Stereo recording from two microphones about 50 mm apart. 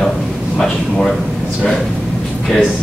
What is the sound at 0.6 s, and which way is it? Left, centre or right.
Speech, centre.